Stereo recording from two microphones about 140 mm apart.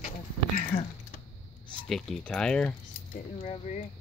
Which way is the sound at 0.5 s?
80° left.